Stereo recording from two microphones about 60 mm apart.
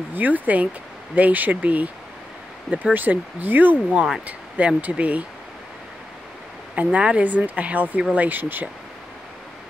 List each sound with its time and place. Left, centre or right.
0.1 s speech: right
6.7 s speech: right